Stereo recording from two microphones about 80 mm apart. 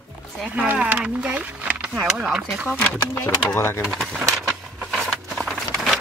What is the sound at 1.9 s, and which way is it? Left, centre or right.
Speech, centre.